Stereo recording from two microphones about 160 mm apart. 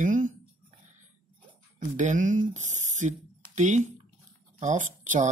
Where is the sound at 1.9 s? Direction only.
50° right (ahead or behind).